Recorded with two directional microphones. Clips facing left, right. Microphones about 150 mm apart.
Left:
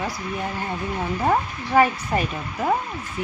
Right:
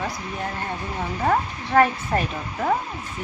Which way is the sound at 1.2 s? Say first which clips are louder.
Right 1 dB; 5° left (ahead or behind).